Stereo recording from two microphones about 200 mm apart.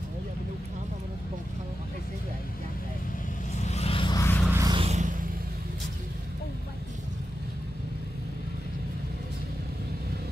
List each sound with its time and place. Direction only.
3.5 s vehicle: 35° left (ahead or behind); by 4.4 s 15° left (ahead or behind)
4.5 s vehicle: 15° right (ahead or behind)
4.8 s vehicle: 35° right (ahead or behind)